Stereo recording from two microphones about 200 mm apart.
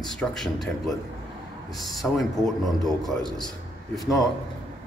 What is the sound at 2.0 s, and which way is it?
A man's voice, centre (ahead or behind).